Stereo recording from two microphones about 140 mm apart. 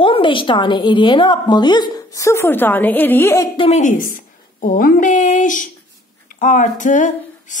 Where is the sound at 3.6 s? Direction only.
50° left (ahead or behind).